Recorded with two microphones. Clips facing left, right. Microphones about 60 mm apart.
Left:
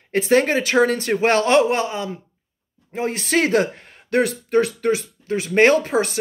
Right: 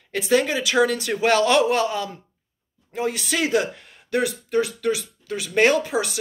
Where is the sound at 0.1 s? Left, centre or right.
Left.